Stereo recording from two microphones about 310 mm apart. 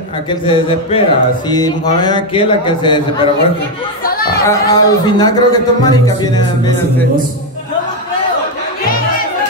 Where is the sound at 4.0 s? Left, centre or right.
Left.